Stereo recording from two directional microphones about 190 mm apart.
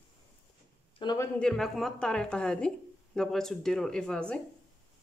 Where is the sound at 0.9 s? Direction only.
20° left (ahead or behind).